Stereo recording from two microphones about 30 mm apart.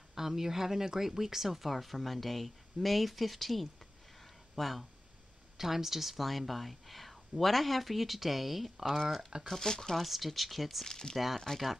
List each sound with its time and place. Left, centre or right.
0.1 s speech: centre
5.6 s speech: centre
8.8 s speech: centre
9.9 s speech: centre
10.9 s speech: left